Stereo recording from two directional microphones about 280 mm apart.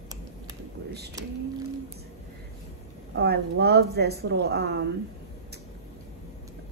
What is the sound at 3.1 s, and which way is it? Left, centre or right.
Speech, right.